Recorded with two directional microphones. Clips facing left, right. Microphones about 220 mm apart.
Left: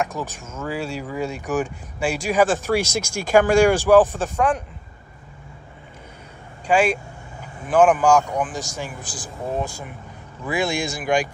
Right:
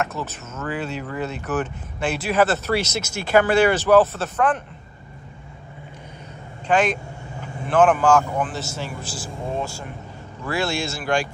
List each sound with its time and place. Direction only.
0.0 s speech: 10° left (ahead or behind)
6.7 s speech: 10° left (ahead or behind)